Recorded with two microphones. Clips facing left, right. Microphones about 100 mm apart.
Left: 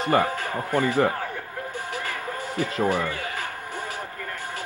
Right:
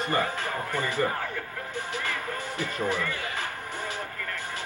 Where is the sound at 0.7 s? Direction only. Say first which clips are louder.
Left 7 dB; 60° left (ahead or behind).